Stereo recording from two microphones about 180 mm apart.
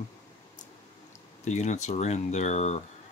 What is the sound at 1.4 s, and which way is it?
Speech, 40° left (ahead or behind).